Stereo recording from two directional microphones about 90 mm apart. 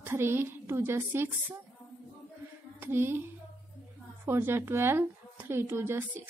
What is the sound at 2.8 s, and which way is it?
Speech, 25° right (ahead or behind).